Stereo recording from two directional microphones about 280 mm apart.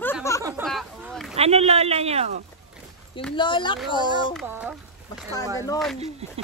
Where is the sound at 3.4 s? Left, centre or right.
Centre.